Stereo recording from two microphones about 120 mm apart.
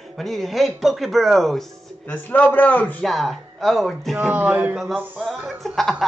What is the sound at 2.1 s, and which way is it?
Speech, 15° left (ahead or behind).